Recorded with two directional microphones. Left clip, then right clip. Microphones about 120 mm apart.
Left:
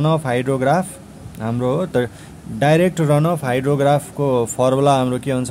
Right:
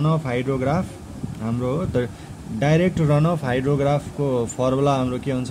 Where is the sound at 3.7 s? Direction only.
35° left (ahead or behind).